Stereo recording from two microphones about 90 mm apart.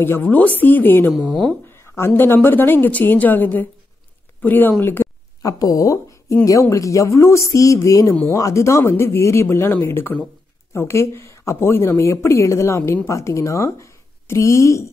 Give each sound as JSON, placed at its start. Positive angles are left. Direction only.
{"t": 0.0, "sound": "a woman's voice", "side_deg": 20}
{"t": 1.1, "sound": "speech", "side_deg": -5}
{"t": 2.0, "sound": "a woman's voice", "side_deg": 25}
{"t": 5.4, "sound": "a woman's voice", "side_deg": 40}